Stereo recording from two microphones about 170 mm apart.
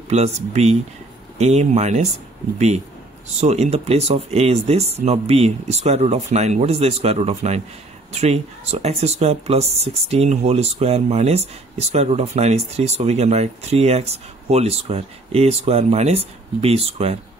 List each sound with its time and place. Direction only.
0.1 s speech: 40° right (ahead or behind)
3.3 s speech: 40° right (ahead or behind)